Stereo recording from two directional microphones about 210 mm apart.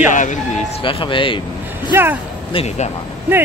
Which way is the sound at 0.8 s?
25° left (ahead or behind).